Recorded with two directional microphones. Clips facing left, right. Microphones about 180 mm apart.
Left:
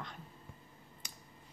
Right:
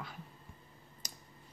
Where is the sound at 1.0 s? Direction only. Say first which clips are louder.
Right 3 dB; 40° right (ahead or behind).